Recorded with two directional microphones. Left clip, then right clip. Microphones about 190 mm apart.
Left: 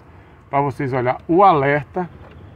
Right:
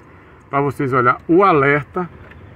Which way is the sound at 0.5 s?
5° right (ahead or behind).